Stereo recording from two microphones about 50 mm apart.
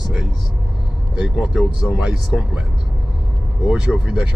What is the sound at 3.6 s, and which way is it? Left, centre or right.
Speech, centre.